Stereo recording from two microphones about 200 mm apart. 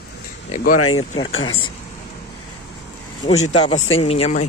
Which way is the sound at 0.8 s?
90° left.